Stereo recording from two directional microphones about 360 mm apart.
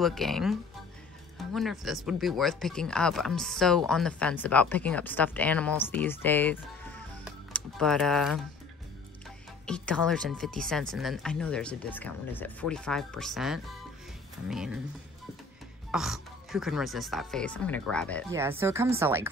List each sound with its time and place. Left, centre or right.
0.0 s speech: centre
9.7 s speech: centre
15.9 s speech: centre
18.3 s speech: centre